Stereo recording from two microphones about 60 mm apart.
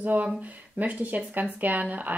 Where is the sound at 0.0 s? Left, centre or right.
Right.